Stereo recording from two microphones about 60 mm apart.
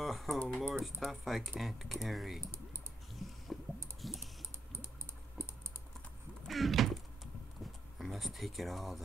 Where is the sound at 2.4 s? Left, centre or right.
Right.